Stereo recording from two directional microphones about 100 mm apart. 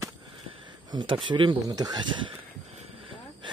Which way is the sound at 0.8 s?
50° right (ahead or behind).